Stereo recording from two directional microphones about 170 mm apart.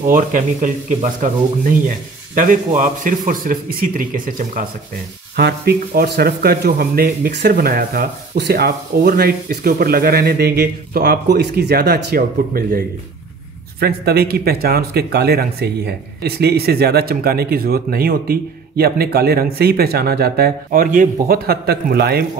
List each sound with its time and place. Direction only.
0.1 s speech: 50° right (ahead or behind)
5.3 s speech: 65° right (ahead or behind)